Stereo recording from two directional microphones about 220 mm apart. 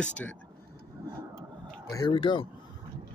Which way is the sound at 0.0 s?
5° left (ahead or behind).